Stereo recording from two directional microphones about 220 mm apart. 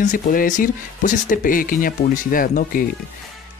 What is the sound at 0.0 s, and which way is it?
Speech, 40° left (ahead or behind).